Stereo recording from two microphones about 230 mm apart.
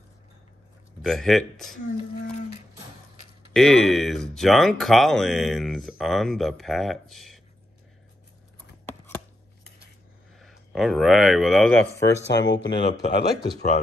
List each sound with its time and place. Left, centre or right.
1.0 s speech: centre
3.5 s speech: centre
10.4 s speech: centre
12.3 s speech: left